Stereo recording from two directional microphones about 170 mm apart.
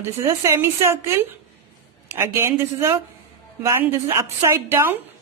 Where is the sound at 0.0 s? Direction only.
15° right (ahead or behind).